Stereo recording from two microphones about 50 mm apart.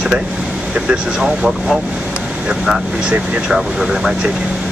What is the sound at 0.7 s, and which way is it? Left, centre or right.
Speech, centre.